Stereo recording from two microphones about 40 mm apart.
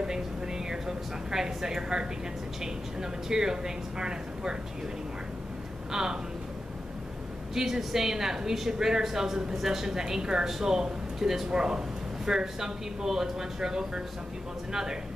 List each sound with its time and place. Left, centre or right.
0.7 s a woman's voice: centre
5.9 s speech: centre
7.5 s speech: centre